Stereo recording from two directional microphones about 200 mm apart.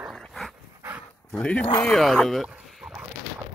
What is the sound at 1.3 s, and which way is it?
Speech, 5° left (ahead or behind).